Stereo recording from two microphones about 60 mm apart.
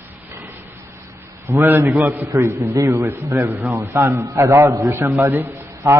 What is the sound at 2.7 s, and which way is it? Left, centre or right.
Speech, right.